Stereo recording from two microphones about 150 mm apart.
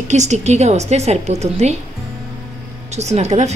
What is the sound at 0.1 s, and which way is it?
A woman's voice, 50° right (ahead or behind).